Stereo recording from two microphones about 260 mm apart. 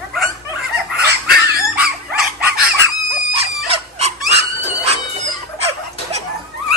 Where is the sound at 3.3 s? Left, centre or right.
Right.